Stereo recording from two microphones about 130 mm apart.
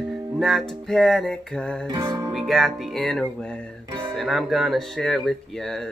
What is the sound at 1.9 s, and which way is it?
Music, 30° right (ahead or behind).